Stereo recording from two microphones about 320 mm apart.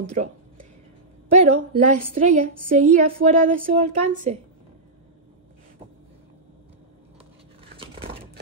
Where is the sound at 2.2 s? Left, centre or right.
Right.